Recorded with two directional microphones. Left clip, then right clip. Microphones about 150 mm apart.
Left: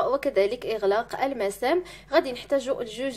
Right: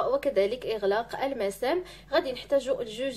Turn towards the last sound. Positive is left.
turn(degrees=35)  # may be behind; listen again after turning